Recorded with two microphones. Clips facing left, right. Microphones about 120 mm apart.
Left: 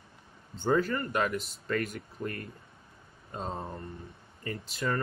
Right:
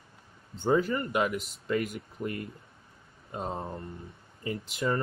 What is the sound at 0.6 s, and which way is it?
Speech, 10° right (ahead or behind).